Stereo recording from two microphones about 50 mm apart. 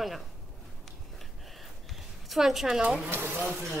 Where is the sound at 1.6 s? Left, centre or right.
Centre.